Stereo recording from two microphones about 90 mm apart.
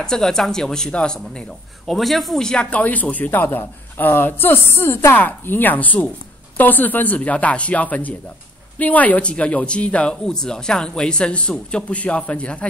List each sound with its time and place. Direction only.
0.0 s speech: 5° left (ahead or behind)